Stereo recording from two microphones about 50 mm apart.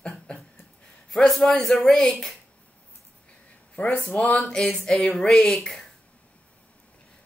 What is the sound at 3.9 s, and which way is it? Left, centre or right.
Speech, left.